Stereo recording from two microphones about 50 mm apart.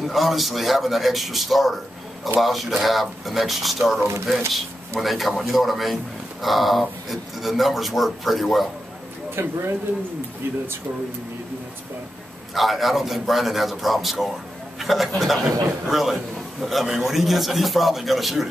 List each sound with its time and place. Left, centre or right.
0.0 s speech: centre
9.3 s speech: right
12.5 s speech: centre